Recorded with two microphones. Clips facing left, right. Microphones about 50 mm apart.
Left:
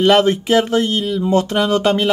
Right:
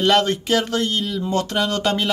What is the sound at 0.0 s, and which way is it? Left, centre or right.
Speech, centre.